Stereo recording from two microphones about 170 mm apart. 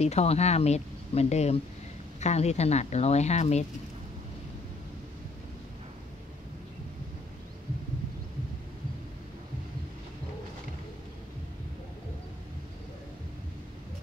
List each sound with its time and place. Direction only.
0.0 s speech: 40° left (ahead or behind)